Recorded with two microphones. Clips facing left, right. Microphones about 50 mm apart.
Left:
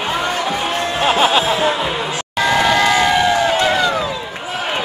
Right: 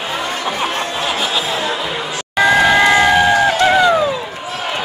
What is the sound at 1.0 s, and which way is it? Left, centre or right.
Music, left.